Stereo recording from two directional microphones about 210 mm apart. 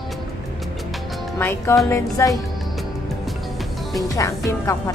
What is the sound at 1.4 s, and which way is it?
Speech, 10° left (ahead or behind).